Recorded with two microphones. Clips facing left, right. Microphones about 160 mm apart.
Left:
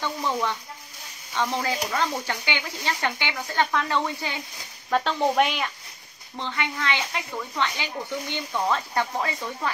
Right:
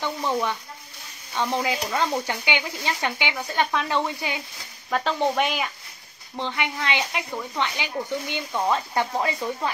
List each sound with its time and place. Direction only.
1.3 s speech: 15° right (ahead or behind)
4.9 s speech: centre (ahead or behind)
6.3 s speech: 15° right (ahead or behind)